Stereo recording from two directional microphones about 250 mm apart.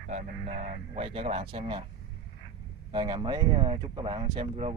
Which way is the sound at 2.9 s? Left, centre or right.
Centre.